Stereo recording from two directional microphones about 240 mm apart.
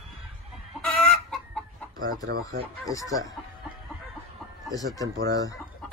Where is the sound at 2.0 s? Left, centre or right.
Right.